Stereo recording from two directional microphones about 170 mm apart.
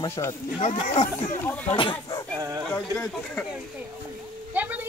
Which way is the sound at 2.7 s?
10° left (ahead or behind).